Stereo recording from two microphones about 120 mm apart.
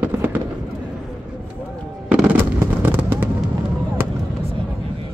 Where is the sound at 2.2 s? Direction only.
15° right (ahead or behind).